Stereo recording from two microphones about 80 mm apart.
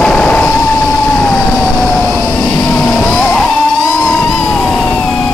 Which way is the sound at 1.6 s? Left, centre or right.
Centre.